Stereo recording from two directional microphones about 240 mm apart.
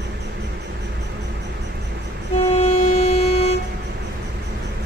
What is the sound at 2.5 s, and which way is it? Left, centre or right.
Vehicle, left.